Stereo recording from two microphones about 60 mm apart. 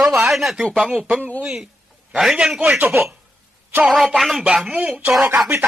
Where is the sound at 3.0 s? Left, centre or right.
Right.